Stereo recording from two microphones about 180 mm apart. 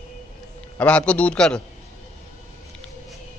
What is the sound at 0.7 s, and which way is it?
Speech, 5° left (ahead or behind).